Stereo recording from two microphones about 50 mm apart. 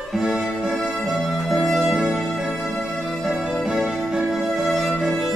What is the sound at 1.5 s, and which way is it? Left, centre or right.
Music, centre.